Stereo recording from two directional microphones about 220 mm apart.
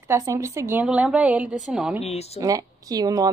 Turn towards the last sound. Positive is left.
turn(degrees=-15)  # may be behind; listen again after turning